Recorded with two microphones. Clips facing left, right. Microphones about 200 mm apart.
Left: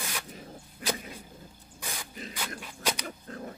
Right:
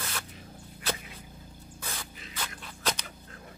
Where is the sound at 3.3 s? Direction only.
40° left (ahead or behind).